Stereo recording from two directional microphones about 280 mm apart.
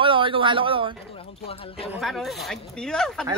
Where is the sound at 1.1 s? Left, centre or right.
Centre.